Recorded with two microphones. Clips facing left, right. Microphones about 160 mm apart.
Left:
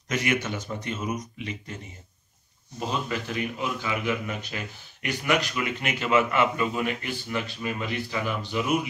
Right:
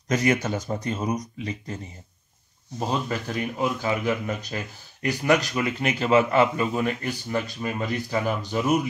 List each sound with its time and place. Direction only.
0.1 s a man's voice: 35° right (ahead or behind)
2.9 s a man's voice: 40° right (ahead or behind)